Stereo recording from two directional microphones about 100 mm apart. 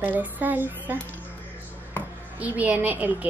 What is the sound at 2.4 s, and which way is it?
Speech, 15° right (ahead or behind).